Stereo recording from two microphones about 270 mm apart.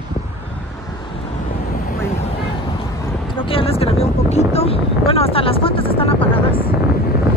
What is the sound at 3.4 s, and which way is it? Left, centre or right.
Vehicle, centre.